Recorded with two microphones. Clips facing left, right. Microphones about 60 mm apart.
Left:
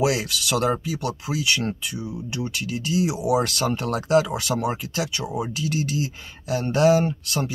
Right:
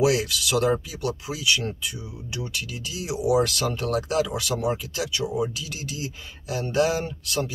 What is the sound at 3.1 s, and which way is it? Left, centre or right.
Speech, left.